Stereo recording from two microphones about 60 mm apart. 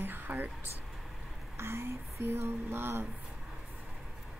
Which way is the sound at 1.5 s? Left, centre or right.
Right.